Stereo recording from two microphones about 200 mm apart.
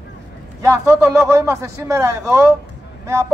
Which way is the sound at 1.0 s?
15° right (ahead or behind).